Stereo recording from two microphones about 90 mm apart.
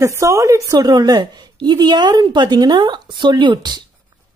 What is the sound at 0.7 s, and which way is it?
A woman's voice, 50° right (ahead or behind).